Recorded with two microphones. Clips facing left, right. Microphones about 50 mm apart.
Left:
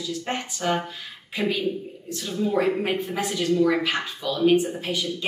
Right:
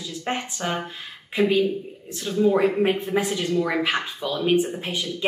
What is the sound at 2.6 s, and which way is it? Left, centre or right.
Speech, centre.